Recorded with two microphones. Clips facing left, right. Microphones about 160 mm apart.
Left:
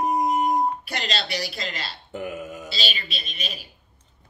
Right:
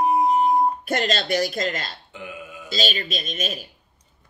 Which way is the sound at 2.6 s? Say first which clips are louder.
Right 6 dB; 45° right (ahead or behind).